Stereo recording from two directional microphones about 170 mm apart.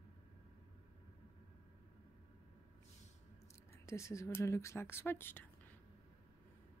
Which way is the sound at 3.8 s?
15° left (ahead or behind).